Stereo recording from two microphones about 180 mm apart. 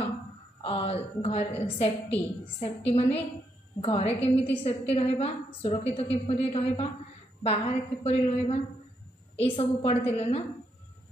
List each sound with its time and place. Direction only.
0.6 s a woman's voice: 30° left (ahead or behind)